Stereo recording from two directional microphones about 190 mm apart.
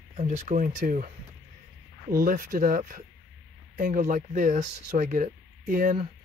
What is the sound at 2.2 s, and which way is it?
Speech, 45° right (ahead or behind).